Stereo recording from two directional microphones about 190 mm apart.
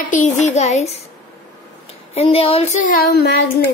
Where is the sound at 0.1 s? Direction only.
40° left (ahead or behind).